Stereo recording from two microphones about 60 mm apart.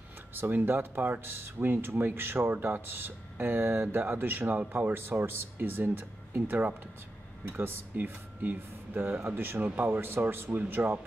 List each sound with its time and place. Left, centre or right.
0.3 s speech: right